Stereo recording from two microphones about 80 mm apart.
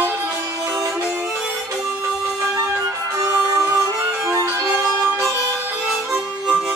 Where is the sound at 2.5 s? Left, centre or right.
Right.